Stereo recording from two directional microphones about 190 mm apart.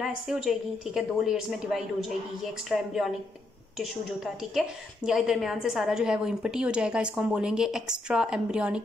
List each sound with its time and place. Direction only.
0.0 s a woman's voice: centre (ahead or behind)